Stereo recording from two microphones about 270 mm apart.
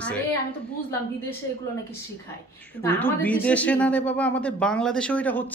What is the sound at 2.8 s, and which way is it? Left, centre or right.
A woman's voice, centre.